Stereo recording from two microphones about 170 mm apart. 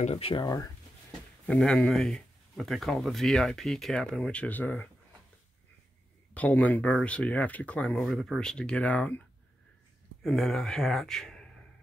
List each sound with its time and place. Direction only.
0.0 s speech: 35° left (ahead or behind)
0.5 s speech: 20° left (ahead or behind)
1.4 s speech: 5° left (ahead or behind)
6.3 s speech: 10° left (ahead or behind)
10.2 s speech: centre (ahead or behind)